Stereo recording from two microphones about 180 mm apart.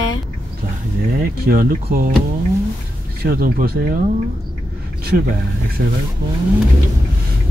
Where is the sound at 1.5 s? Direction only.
55° right (ahead or behind).